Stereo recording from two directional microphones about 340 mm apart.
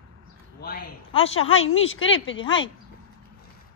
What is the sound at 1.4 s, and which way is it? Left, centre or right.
Speech, left.